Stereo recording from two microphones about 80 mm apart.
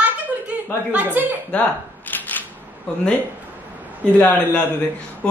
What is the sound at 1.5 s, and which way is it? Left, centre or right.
Speech, centre.